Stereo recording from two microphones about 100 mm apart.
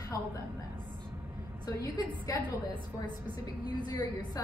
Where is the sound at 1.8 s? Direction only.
35° left (ahead or behind).